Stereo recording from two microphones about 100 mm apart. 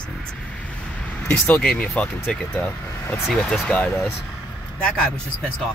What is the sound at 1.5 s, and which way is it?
Speech, 5° left (ahead or behind).